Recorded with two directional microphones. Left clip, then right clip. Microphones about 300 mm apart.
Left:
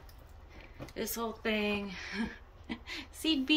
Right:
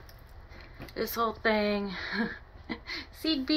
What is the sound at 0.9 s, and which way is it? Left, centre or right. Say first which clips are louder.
Speech: right 7 dB; centre.